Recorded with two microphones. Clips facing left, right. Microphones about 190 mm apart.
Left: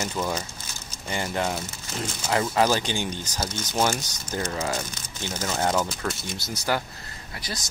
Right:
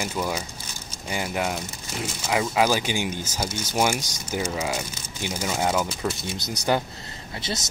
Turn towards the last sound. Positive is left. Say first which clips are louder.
# right 5 dB
turn(degrees=-25)  # may be behind; listen again after turning